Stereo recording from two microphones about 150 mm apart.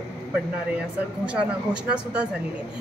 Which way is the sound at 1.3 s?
5° right (ahead or behind).